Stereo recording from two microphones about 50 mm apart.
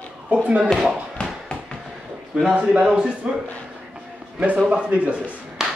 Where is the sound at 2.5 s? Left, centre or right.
Centre.